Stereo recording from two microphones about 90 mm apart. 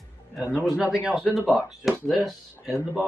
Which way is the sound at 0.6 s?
5° right (ahead or behind).